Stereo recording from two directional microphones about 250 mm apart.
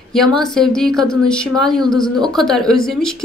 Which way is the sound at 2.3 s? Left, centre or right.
Centre.